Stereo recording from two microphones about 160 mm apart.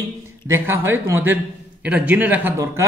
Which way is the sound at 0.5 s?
15° right (ahead or behind).